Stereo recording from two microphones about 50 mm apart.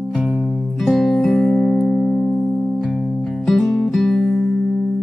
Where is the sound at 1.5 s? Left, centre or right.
Centre.